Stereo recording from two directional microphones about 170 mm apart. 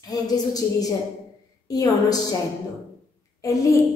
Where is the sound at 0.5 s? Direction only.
20° left (ahead or behind).